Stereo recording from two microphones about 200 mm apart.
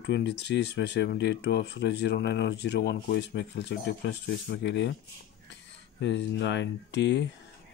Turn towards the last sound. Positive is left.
turn(degrees=60)  # may be behind; listen again after turning